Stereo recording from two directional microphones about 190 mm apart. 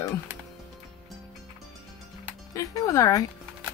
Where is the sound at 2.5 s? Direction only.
15° left (ahead or behind).